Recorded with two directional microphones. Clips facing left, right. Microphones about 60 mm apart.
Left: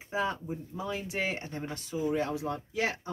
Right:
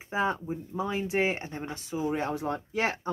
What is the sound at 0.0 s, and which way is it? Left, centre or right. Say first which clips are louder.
Speech: right 3 dB; right.